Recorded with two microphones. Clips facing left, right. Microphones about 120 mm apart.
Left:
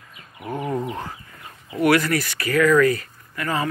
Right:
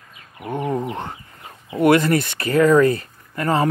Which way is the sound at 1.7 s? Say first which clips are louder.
Right 3 dB; 25° right (ahead or behind).